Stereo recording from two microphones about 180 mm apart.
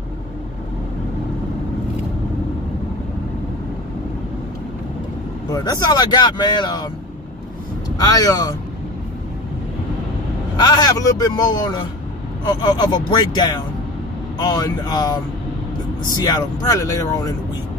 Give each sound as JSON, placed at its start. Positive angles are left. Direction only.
{"t": 5.5, "sound": "speech", "side_deg": 20}
{"t": 8.0, "sound": "speech", "side_deg": 20}
{"t": 10.5, "sound": "speech", "side_deg": 20}